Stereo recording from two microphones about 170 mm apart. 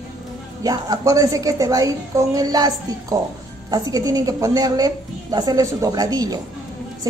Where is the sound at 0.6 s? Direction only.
20° right (ahead or behind).